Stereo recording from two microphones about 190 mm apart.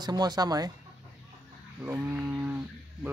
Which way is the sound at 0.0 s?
20° right (ahead or behind).